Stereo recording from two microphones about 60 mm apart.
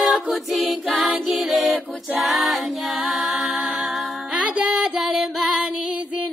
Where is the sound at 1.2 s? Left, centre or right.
Centre.